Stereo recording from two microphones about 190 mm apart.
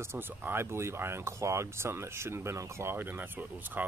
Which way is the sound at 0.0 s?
10° right (ahead or behind).